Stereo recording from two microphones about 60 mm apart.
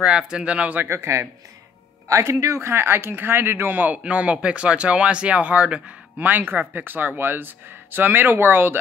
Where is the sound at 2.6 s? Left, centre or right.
Right.